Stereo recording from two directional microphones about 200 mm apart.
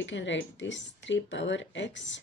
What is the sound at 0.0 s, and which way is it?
Speech, 65° left (ahead or behind).